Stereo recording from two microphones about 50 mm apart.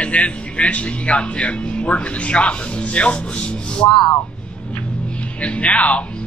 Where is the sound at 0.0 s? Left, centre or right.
Left.